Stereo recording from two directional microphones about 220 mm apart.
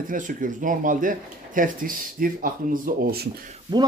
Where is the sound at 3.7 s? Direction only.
20° right (ahead or behind).